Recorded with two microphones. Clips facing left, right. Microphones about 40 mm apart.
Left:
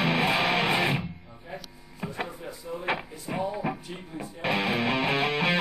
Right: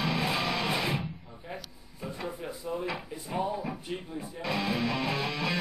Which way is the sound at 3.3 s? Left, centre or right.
Left.